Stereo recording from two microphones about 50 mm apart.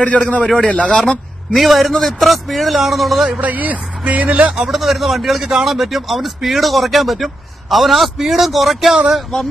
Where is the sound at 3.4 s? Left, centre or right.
Right.